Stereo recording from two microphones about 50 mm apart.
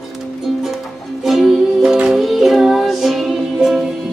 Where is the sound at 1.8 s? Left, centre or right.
Centre.